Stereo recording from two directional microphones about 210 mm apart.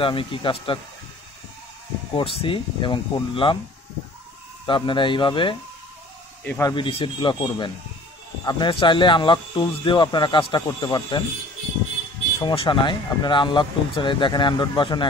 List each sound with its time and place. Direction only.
0.0 s speech: 25° left (ahead or behind)
2.1 s speech: 25° left (ahead or behind)
4.6 s speech: 25° left (ahead or behind)
6.4 s speech: 10° left (ahead or behind)
6.7 s speech: 25° left (ahead or behind)
12.4 s speech: 20° left (ahead or behind)